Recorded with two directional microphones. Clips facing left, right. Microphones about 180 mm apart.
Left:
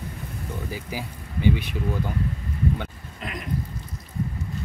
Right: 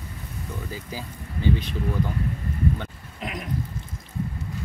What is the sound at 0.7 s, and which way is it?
Speech, 15° left (ahead or behind).